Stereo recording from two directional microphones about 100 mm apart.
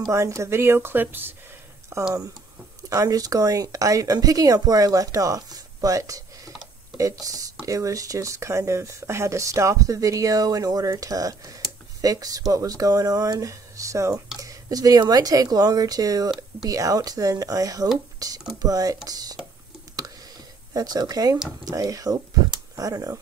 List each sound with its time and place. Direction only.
0.1 s a woman's voice: 30° right (ahead or behind)
20.7 s speech: 40° right (ahead or behind)